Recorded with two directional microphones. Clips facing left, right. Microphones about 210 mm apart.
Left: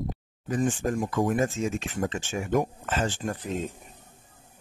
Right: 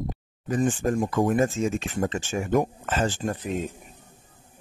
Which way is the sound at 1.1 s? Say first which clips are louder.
Right 2 dB; 50° right (ahead or behind).